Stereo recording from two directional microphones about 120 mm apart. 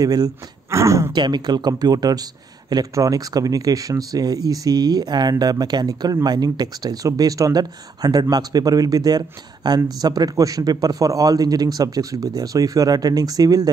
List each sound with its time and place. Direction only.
0.0 s speech: 30° right (ahead or behind)
1.1 s speech: 40° right (ahead or behind)